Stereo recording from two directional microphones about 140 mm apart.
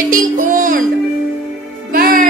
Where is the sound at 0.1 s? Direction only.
70° right (ahead or behind).